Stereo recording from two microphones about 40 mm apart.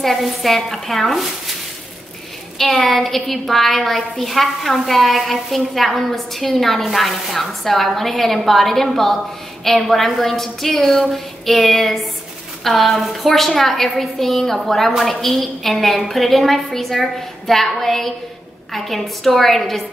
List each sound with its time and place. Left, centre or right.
0.0 s a woman's voice: centre
2.9 s a woman's voice: centre